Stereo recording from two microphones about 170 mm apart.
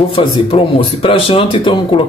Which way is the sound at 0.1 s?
30° left (ahead or behind).